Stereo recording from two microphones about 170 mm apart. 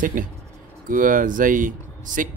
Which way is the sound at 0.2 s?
55° right (ahead or behind).